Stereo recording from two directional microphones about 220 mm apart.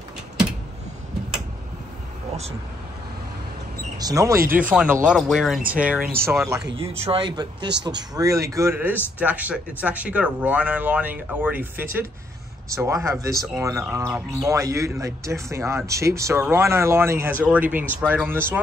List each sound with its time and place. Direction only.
4.0 s speech: 15° right (ahead or behind)
4.4 s speech: 40° right (ahead or behind)
4.6 s speech: 5° right (ahead or behind)
6.8 s speech: 25° right (ahead or behind); by 18.6 s 10° right (ahead or behind)